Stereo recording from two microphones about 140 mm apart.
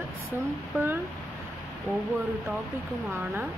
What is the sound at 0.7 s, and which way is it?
Speech, 15° right (ahead or behind).